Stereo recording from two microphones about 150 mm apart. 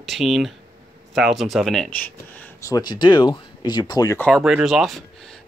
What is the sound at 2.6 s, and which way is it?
Speech, 25° left (ahead or behind).